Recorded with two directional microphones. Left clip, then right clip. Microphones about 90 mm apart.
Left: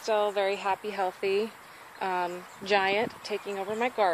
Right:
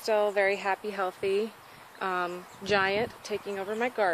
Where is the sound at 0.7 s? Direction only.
20° right (ahead or behind).